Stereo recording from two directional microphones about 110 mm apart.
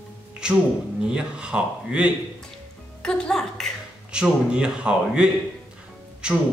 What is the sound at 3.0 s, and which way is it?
Speech, 5° left (ahead or behind).